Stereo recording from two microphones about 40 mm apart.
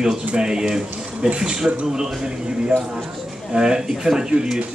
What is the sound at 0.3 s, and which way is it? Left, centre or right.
Speech, centre.